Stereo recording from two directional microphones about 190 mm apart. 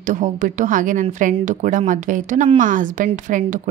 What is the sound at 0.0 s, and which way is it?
A woman's voice, 40° right (ahead or behind).